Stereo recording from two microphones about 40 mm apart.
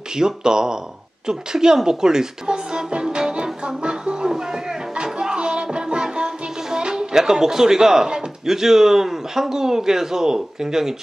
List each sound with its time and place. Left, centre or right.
0.1 s speech: centre
1.2 s music: centre